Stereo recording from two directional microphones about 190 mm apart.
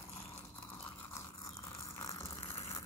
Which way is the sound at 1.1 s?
15° left (ahead or behind).